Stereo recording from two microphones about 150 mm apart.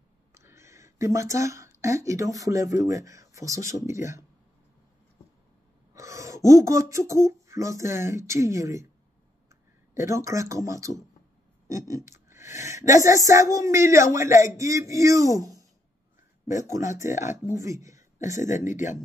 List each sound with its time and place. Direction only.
0.3 s speech: 20° right (ahead or behind)
5.9 s speech: 20° right (ahead or behind)
9.9 s speech: 20° right (ahead or behind)
11.6 s a sound: 20° right (ahead or behind)
12.9 s speech: 20° right (ahead or behind)
18.4 s speech: 55° left (ahead or behind)